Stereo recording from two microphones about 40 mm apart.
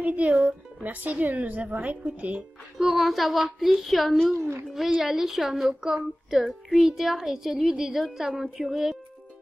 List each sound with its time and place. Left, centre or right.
0.0 s music: right
0.7 s a woman's voice: right
2.8 s a child's voice: centre